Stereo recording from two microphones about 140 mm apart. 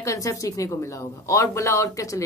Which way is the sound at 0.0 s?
25° left (ahead or behind).